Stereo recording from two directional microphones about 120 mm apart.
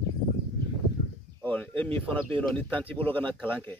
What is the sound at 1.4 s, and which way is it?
Speech, 10° left (ahead or behind).